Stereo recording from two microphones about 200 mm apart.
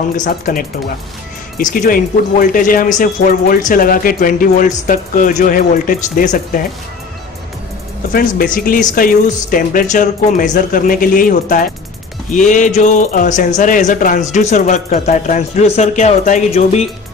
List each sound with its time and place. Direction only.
0.1 s speech: 45° left (ahead or behind)
8.1 s speech: 45° left (ahead or behind)